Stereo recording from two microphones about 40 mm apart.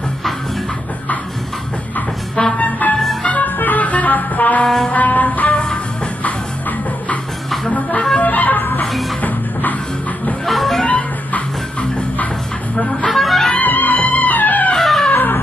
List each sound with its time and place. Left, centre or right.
2.3 s music: left
3.3 s music: left
4.6 s music: centre
4.9 s music: left
8.2 s music: left
10.4 s music: centre
10.9 s music: left
13.1 s music: centre
13.6 s music: left
14.8 s music: centre